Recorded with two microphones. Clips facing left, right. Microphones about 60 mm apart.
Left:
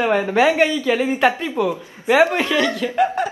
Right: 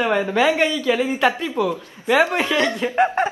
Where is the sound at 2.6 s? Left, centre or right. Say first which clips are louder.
Even; right.